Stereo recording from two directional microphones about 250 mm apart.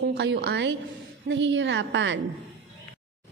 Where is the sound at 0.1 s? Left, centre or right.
Right.